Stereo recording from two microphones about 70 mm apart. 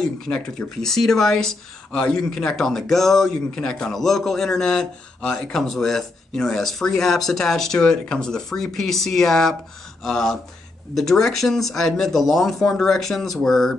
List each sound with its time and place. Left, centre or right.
0.0 s speech: centre